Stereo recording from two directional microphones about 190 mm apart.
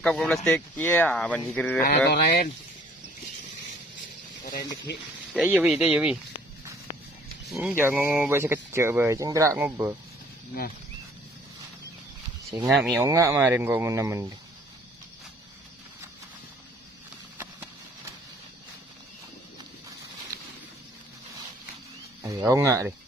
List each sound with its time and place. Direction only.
0.0 s speech: centre (ahead or behind)
2.0 s speech: 50° left (ahead or behind)
5.3 s speech: 5° right (ahead or behind)
7.4 s speech: centre (ahead or behind)
12.4 s speech: centre (ahead or behind)
13.0 s speech: 15° right (ahead or behind)
22.2 s speech: 15° right (ahead or behind)